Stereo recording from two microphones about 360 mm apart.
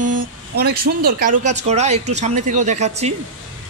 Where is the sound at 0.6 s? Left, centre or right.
Right.